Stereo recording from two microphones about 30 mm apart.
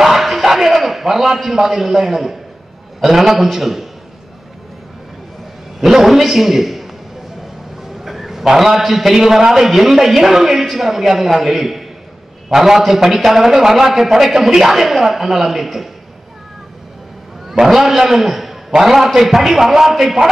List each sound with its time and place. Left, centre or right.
0.0 s a sound: centre
0.4 s a man's voice: centre
5.8 s a man's voice: centre
8.0 s a man's voice: centre
17.6 s a man's voice: centre
18.7 s a man's voice: centre
19.2 s a man's voice: centre